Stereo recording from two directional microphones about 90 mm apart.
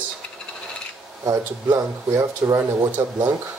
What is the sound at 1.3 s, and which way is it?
Speech, 40° right (ahead or behind).